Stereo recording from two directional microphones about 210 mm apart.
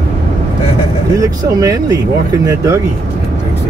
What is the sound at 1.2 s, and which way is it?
Speech, 15° right (ahead or behind).